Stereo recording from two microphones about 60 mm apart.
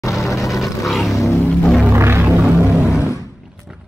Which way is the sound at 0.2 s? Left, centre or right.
Left.